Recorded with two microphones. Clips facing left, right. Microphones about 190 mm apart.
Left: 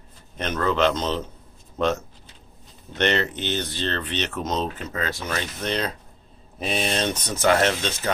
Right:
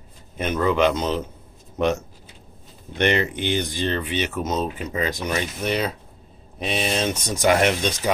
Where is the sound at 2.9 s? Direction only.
10° right (ahead or behind).